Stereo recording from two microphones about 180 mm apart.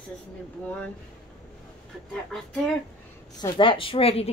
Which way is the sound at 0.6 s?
5° left (ahead or behind).